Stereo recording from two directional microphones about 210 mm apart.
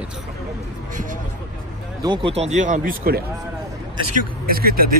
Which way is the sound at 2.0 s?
25° right (ahead or behind).